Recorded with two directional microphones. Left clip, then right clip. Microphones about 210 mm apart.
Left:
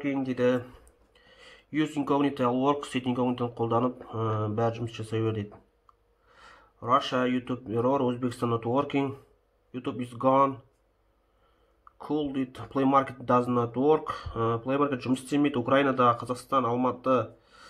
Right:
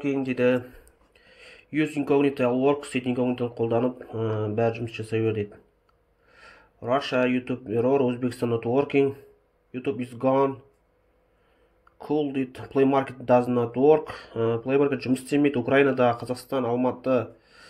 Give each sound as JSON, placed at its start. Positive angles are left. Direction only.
{"t": 0.2, "sound": "speech", "side_deg": 45}
{"t": 12.4, "sound": "speech", "side_deg": 40}